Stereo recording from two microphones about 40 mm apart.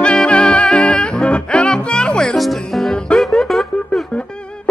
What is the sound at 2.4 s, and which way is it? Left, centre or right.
Music, centre.